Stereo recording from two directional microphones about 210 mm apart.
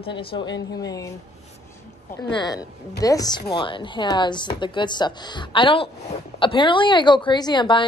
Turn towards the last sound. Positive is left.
turn(degrees=20)  # may be behind; listen again after turning